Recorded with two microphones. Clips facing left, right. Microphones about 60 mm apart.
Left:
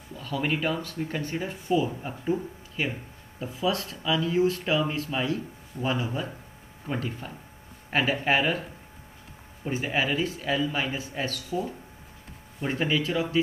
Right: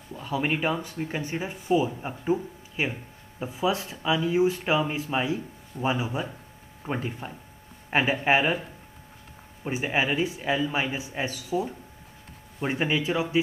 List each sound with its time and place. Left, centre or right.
0.1 s speech: right
9.7 s speech: centre